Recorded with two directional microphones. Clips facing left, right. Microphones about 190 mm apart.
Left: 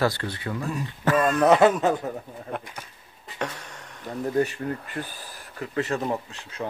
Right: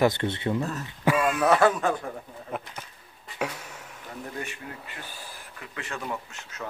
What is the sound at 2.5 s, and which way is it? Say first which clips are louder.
Speech: left 1 dB; 5° right (ahead or behind).